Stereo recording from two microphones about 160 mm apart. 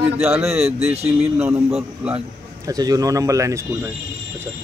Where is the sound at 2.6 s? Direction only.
25° right (ahead or behind).